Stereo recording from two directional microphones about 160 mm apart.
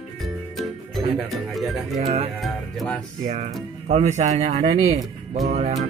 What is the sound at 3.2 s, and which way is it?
A man's voice, 50° right (ahead or behind).